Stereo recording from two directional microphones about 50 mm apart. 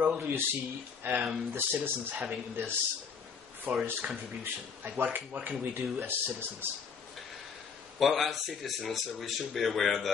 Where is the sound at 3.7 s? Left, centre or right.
Right.